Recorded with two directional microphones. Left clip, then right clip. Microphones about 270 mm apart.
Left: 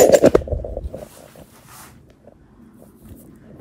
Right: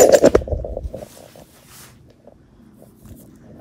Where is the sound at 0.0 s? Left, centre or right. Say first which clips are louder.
Right 1 dB; left.